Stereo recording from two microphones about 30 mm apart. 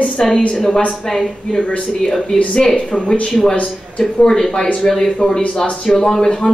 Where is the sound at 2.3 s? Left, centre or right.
Centre.